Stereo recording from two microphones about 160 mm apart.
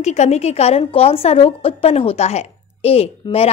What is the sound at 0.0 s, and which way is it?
A woman's voice, 45° left (ahead or behind).